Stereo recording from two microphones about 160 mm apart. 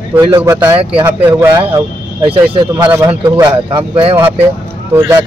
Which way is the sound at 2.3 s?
35° right (ahead or behind).